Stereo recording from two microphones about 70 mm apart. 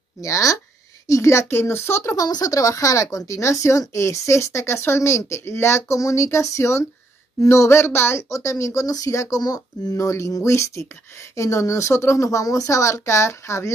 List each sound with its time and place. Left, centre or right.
0.2 s speech: left
2.1 s speech: left
9.4 s speech: left
9.9 s speech: left